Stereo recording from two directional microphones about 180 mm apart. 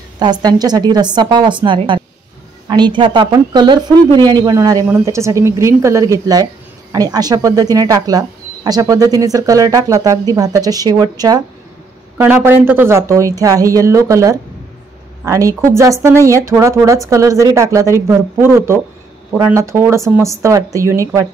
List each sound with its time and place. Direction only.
0.2 s a woman's voice: 20° right (ahead or behind)